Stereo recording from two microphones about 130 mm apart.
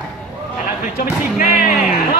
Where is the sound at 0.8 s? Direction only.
90° left.